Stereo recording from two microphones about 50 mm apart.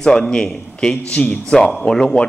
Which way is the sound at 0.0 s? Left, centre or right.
Centre.